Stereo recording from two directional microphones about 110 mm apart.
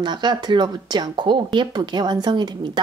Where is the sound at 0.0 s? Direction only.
45° right (ahead or behind).